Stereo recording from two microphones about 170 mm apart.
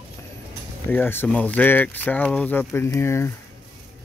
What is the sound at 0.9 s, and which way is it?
Speech, 10° left (ahead or behind).